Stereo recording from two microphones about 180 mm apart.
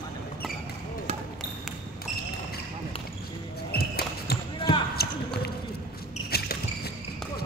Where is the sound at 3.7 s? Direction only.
60° left (ahead or behind).